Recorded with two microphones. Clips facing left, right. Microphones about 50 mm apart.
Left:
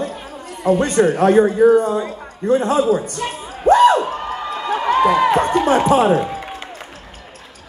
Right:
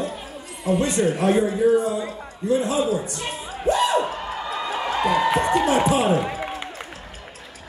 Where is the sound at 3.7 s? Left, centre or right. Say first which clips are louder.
Left 10 dB; left.